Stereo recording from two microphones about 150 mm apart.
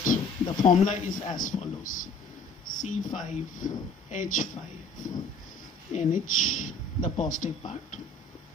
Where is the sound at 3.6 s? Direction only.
60° left (ahead or behind).